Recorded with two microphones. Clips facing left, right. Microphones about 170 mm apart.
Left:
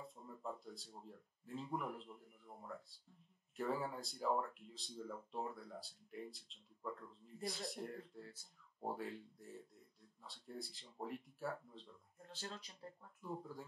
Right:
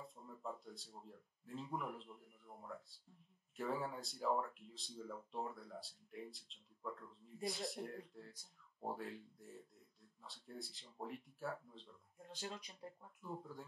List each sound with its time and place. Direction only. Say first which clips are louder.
0.0 s speech: left 1 dB; centre (ahead or behind)
12.5 s speech: right 1 dB; 15° right (ahead or behind)
13.2 s speech: left 2 dB; centre (ahead or behind)